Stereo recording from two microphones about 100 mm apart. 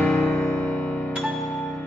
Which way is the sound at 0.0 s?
15° left (ahead or behind).